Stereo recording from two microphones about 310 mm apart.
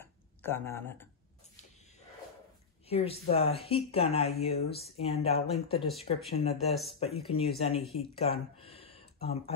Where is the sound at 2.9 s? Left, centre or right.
Centre.